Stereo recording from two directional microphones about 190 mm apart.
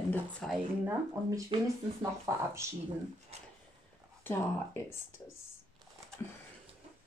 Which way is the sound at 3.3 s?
35° right (ahead or behind).